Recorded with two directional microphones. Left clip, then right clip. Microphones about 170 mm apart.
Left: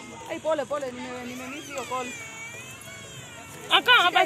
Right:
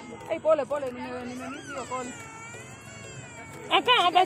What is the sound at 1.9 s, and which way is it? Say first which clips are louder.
Speech: left 3 dB; 40° left (ahead or behind).